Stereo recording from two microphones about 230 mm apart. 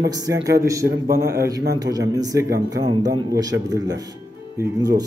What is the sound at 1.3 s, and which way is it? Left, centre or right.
A man's voice, centre.